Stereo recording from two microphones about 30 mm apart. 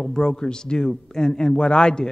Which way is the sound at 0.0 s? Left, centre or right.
Left.